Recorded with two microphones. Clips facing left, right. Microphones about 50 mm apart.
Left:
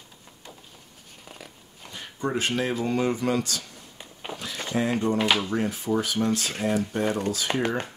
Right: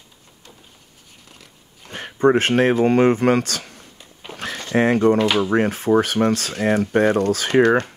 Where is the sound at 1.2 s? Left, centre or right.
Centre.